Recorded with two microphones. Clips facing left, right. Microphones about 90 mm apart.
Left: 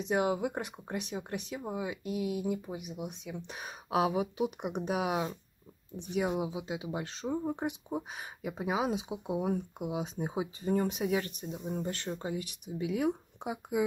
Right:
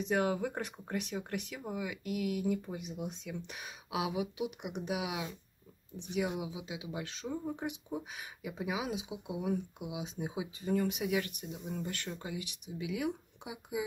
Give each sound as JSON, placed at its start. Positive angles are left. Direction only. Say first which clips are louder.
{"t": 0.0, "sound": "speech", "louder": "left 2 dB", "side_deg": 20}
{"t": 3.4, "sound": "speech", "louder": "left 5 dB", "side_deg": 40}